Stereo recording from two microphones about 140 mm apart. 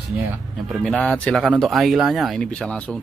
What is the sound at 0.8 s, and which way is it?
Speech, 5° left (ahead or behind).